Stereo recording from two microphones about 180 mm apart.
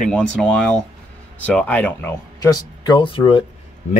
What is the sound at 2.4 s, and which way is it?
Speech, 25° left (ahead or behind).